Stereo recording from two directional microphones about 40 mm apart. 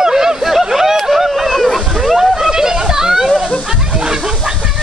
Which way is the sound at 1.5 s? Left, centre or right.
Centre.